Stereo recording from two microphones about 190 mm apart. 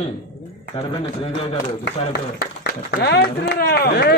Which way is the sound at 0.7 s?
30° left (ahead or behind).